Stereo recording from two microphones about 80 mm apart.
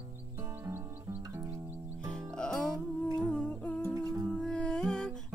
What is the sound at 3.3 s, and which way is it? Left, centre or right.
Humming, centre.